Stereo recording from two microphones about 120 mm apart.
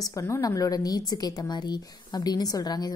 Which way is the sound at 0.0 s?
25° left (ahead or behind).